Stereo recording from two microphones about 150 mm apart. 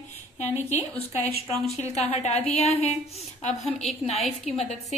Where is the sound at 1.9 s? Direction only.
45° left (ahead or behind).